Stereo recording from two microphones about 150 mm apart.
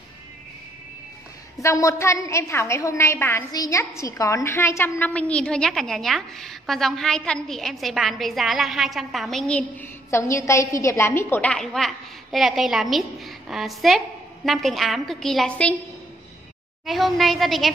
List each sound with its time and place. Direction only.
1.6 s a woman's voice: 20° left (ahead or behind)
16.8 s a woman's voice: centre (ahead or behind)